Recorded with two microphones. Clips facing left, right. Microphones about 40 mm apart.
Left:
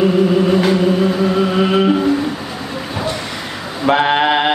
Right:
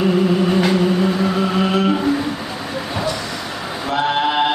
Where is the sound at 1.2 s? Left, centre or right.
Centre.